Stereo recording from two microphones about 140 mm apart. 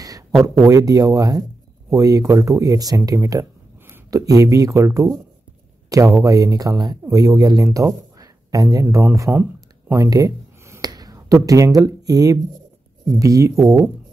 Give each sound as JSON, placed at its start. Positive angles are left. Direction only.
{"t": 0.0, "sound": "speech", "side_deg": -25}
{"t": 9.9, "sound": "a sound", "side_deg": -25}
{"t": 13.0, "sound": "speech", "side_deg": -25}